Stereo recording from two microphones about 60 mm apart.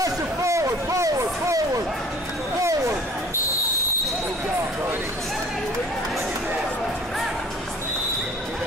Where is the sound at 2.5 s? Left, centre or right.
Right.